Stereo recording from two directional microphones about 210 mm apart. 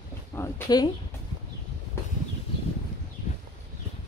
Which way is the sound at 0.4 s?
15° left (ahead or behind).